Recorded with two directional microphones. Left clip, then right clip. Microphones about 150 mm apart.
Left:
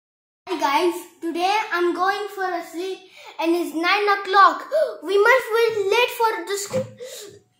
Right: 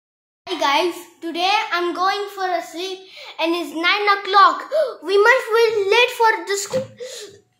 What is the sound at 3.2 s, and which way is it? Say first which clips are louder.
A child's voice: even; 10° right (ahead or behind).